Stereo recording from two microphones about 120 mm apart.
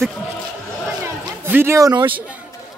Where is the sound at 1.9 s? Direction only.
45° right (ahead or behind).